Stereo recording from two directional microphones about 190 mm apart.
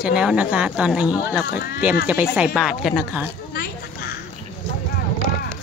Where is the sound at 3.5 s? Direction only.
55° left (ahead or behind).